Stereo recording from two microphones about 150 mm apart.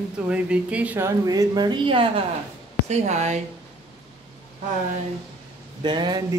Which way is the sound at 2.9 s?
50° right (ahead or behind).